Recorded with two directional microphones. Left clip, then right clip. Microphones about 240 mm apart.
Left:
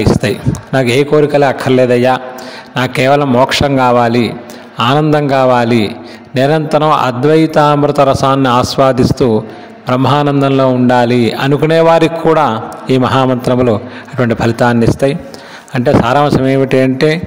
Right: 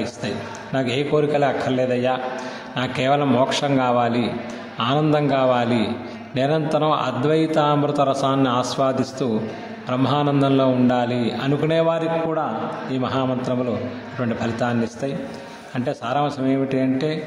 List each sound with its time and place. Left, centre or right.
0.0 s a man's voice: left